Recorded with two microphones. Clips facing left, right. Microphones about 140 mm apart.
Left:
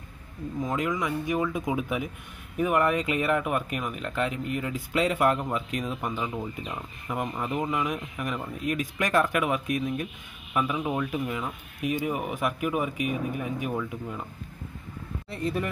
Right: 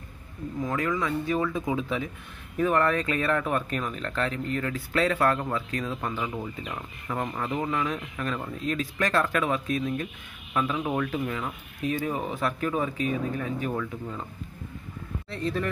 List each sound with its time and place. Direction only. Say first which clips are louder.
0.6 s speech: even; 20° left (ahead or behind)
15.2 s speech: even; 10° left (ahead or behind)